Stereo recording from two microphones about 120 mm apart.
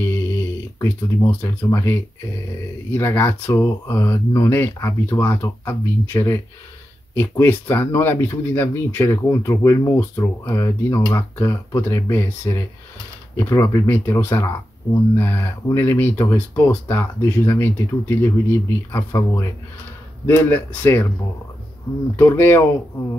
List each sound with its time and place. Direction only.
0.0 s snoring: 20° left (ahead or behind)
2.9 s speech: 20° left (ahead or behind)
22.1 s speech: 20° left (ahead or behind)